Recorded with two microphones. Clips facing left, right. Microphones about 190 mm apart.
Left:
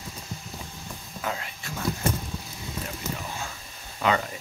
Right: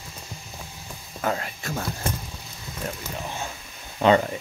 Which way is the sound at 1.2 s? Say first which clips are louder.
Right 6 dB; 50° right (ahead or behind).